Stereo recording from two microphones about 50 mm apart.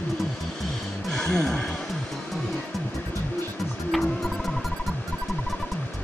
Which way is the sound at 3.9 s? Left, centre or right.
Centre.